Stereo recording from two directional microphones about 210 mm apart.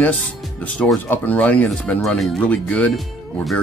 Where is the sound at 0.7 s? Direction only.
5° left (ahead or behind).